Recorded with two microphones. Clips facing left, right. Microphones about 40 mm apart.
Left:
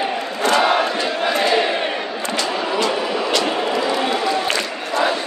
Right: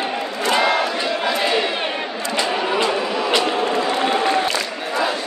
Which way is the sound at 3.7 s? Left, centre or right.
Right.